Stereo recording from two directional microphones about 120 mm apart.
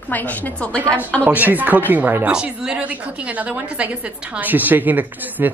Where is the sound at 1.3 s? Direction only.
15° right (ahead or behind).